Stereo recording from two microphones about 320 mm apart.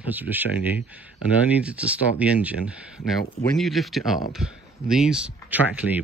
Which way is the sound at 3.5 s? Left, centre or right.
Centre.